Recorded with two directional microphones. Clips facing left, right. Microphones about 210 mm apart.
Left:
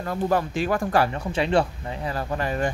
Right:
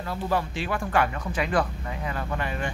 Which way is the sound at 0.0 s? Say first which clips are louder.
Left 4 dB; 45° left (ahead or behind).